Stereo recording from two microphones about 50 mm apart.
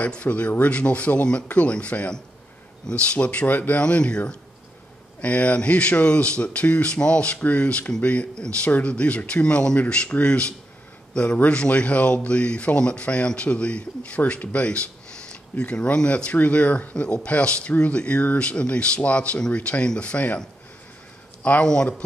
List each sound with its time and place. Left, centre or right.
0.0 s a man's voice: left
5.2 s a man's voice: left
11.5 s a man's voice: left